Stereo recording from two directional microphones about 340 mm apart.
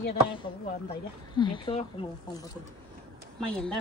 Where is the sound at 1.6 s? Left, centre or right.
Centre.